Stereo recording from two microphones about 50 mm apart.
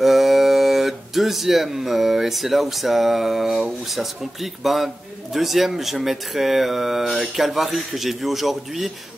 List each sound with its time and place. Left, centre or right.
0.0 s a man's voice: centre